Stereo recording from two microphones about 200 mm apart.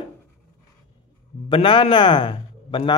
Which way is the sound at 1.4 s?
25° left (ahead or behind).